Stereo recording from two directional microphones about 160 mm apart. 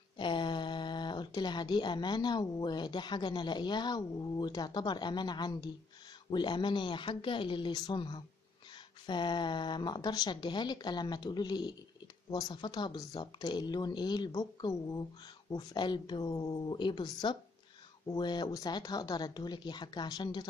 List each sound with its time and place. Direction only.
0.2 s speech: 30° left (ahead or behind)